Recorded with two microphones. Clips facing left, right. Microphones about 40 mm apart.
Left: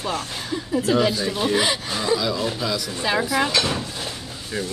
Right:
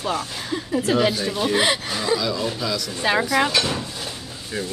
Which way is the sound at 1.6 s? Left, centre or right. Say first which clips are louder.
Right 2 dB; right.